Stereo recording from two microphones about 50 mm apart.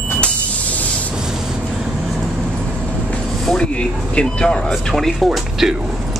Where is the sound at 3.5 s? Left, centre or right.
Centre.